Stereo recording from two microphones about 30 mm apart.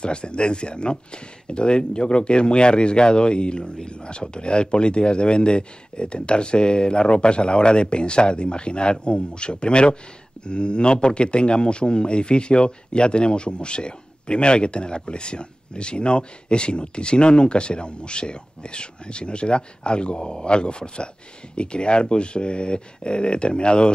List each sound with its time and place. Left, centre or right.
0.0 s speech: left